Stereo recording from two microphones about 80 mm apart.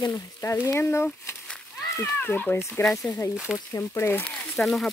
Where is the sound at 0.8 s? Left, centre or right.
Left.